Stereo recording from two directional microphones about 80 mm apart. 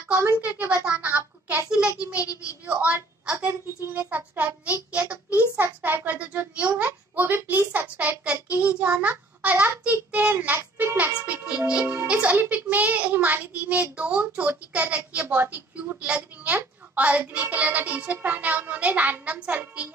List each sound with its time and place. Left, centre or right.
0.4 s a woman's voice: centre
0.8 s a sound: centre
2.6 s a woman's voice: centre
4.9 s a sound: centre
6.9 s a child's voice: right
9.4 s a sound: centre
10.8 s music: right
11.8 s music: right
12.1 s music: centre
12.4 s child singing: centre
13.9 s a woman's voice: centre